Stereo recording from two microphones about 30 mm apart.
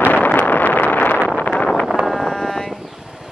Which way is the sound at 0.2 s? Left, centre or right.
Left.